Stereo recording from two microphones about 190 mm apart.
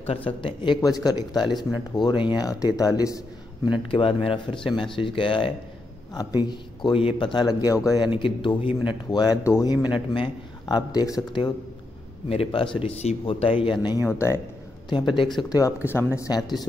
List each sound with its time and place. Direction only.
0.0 s speech: 30° left (ahead or behind)
12.3 s speech: 30° left (ahead or behind)
15.5 s speech: 15° left (ahead or behind)